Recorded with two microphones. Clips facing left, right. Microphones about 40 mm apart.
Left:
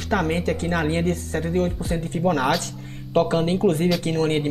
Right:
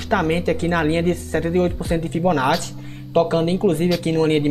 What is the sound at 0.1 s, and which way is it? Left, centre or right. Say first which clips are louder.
Speech: right 3 dB; centre.